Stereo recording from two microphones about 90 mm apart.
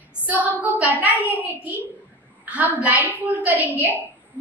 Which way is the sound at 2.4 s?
15° right (ahead or behind).